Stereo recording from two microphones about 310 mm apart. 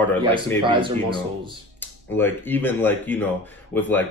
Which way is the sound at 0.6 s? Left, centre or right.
Centre.